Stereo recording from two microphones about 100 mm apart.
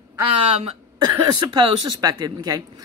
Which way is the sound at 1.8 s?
40° right (ahead or behind).